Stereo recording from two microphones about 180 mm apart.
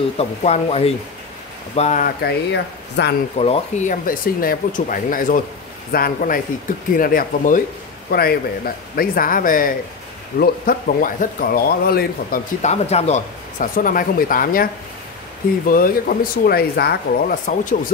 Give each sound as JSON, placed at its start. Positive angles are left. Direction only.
{"t": 0.2, "sound": "speech", "side_deg": 35}
{"t": 2.2, "sound": "speech", "side_deg": 65}
{"t": 3.3, "sound": "speech", "side_deg": 35}
{"t": 12.6, "sound": "speech", "side_deg": 35}
{"t": 15.7, "sound": "speech", "side_deg": 55}